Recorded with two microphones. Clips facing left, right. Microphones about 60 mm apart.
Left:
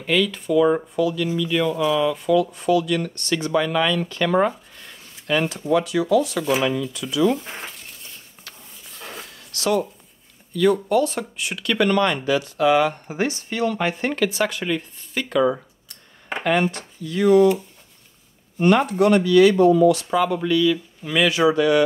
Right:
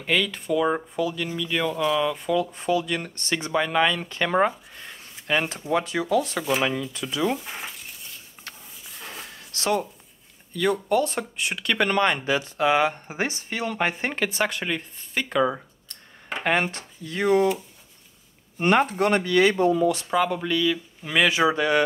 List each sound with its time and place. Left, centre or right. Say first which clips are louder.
0.0 s speech: left 3 dB; centre
1.8 s speech: left 1 dB; centre
2.1 s speech: left 5 dB; right
4.7 s a sound: right 1 dB; right
5.7 s speech: left 5 dB; right
7.3 s speech: left 2 dB; centre
9.5 s speech: left 3 dB; right
10.9 s speech: left 3 dB; right
18.6 s speech: left 3 dB; right
20.1 s speech: left 3 dB; centre; by 21.8 s right